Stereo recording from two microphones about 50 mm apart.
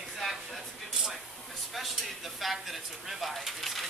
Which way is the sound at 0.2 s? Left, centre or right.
Centre.